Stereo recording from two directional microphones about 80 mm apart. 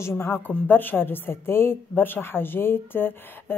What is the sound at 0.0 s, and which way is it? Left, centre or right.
Speech, left.